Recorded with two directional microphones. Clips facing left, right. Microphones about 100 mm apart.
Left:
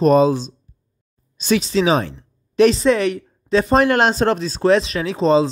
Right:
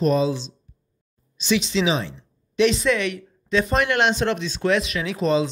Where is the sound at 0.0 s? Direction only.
45° left (ahead or behind).